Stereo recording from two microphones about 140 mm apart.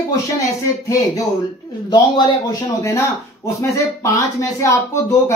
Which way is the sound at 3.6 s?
20° left (ahead or behind).